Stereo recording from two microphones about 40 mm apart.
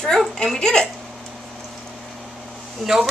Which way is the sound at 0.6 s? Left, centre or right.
Centre.